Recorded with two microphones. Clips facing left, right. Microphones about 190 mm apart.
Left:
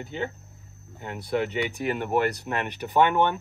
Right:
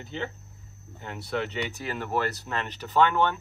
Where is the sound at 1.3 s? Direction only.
10° left (ahead or behind).